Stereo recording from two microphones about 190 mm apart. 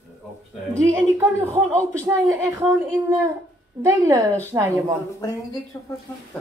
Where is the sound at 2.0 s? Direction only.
15° right (ahead or behind).